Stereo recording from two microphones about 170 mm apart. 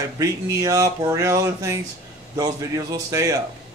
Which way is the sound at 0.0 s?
20° right (ahead or behind).